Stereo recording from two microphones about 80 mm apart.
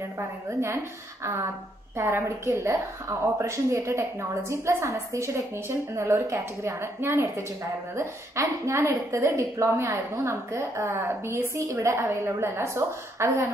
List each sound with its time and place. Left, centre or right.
0.5 s a woman's voice: right